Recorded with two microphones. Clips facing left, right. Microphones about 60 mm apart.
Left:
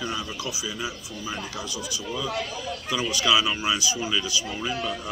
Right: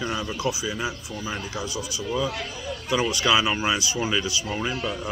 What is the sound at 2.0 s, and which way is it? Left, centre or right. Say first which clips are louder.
Speech: right 2 dB; centre.